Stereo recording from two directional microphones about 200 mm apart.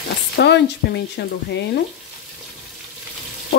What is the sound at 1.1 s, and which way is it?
Speech, 60° left (ahead or behind).